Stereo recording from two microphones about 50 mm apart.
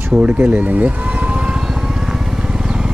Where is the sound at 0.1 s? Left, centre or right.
Right.